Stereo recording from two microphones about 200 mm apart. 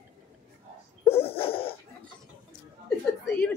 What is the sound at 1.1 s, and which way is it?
Dog, 30° left (ahead or behind).